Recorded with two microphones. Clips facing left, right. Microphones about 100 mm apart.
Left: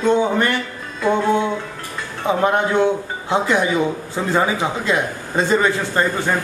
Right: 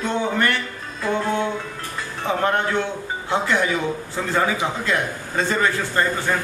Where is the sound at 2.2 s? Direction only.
15° left (ahead or behind).